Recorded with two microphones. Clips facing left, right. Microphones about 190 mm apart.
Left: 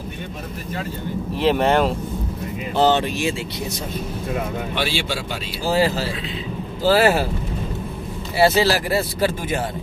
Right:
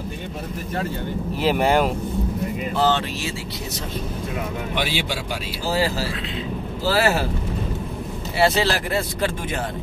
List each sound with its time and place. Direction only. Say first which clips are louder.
1.3 s speech: left 2 dB; 5° right (ahead or behind)
2.7 s speech: left 5 dB; 20° left (ahead or behind)
4.7 s speech: even; 15° right (ahead or behind)
5.7 s speech: left 3 dB; 20° left (ahead or behind)
8.4 s speech: left 3 dB; 5° left (ahead or behind)